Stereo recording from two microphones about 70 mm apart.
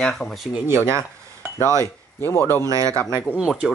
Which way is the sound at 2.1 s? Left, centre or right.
Left.